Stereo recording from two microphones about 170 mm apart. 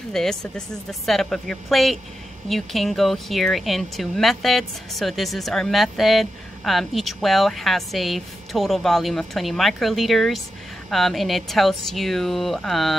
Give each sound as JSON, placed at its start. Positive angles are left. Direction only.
{"t": 0.1, "sound": "speech", "side_deg": 5}